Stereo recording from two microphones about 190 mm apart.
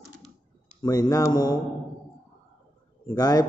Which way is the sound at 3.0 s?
20° left (ahead or behind).